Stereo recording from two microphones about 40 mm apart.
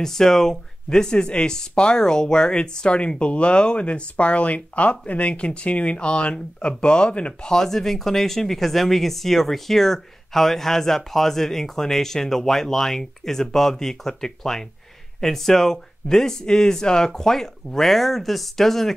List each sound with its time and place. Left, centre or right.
0.0 s speech: centre; by 7.5 s left
7.5 s speech: centre